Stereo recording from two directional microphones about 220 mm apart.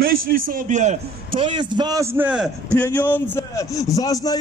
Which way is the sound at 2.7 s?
5° left (ahead or behind).